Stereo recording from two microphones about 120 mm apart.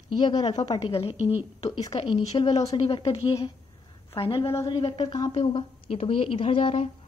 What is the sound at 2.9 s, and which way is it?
A woman's voice, 50° left (ahead or behind).